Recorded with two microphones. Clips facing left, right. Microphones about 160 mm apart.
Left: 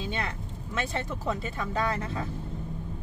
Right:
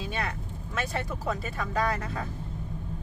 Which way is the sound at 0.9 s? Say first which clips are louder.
Even; 25° left (ahead or behind).